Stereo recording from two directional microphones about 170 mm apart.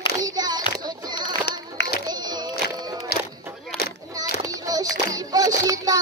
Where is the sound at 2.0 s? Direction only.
25° right (ahead or behind).